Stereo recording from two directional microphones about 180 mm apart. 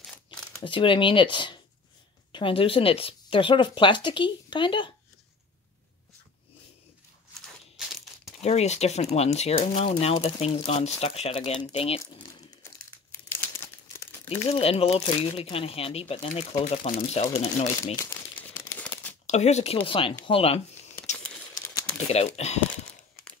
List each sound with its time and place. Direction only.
0.6 s speech: 30° left (ahead or behind)
7.7 s tearing: centre (ahead or behind)
8.4 s speech: 35° left (ahead or behind)
9.8 s speech: 30° left (ahead or behind)
13.3 s crumpling: 15° left (ahead or behind)
14.5 s speech: 35° left (ahead or behind)
18.7 s crumpling: 10° left (ahead or behind)
19.2 s speech: 40° left (ahead or behind)
21.5 s a sound: 20° left (ahead or behind)
22.0 s speech: 35° left (ahead or behind)